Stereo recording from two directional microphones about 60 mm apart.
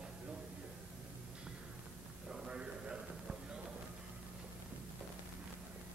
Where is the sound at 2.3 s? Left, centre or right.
Centre.